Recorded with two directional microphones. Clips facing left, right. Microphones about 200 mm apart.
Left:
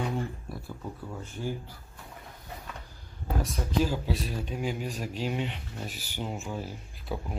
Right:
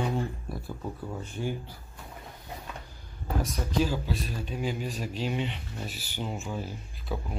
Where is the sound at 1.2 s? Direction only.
15° right (ahead or behind).